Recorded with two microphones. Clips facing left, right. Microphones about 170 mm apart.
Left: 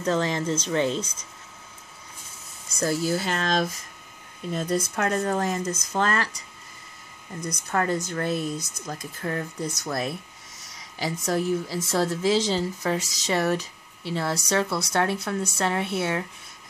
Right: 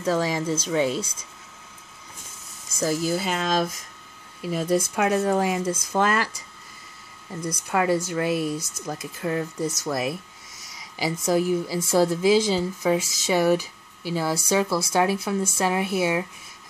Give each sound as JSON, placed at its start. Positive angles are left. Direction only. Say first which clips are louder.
{"t": 0.0, "sound": "speech", "louder": "right 1 dB", "side_deg": -5}
{"t": 2.8, "sound": "speech", "louder": "right 1 dB", "side_deg": -10}
{"t": 7.3, "sound": "speech", "louder": "right 3 dB", "side_deg": -30}
{"t": 7.7, "sound": "speech", "louder": "right 3 dB", "side_deg": -10}
{"t": 11.2, "sound": "speech", "louder": "right 3 dB", "side_deg": -5}